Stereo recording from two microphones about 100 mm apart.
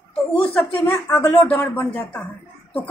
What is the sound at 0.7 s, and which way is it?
A woman's voice, 20° left (ahead or behind).